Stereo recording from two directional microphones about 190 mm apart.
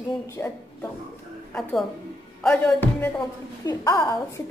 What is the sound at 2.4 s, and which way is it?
Music, 5° left (ahead or behind).